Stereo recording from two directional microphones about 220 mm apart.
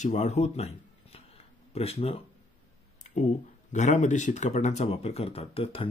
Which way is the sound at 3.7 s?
35° left (ahead or behind).